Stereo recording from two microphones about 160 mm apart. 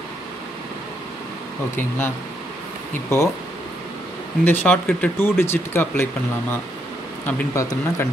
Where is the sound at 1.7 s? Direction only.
15° left (ahead or behind).